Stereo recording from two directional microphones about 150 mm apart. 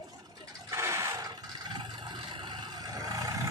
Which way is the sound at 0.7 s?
20° right (ahead or behind).